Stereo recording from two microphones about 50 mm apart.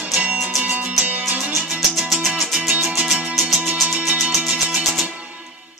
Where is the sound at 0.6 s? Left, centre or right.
Right.